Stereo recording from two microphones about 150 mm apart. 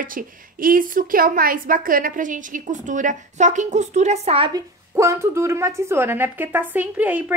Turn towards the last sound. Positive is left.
turn(degrees=-10)  # may be behind; listen again after turning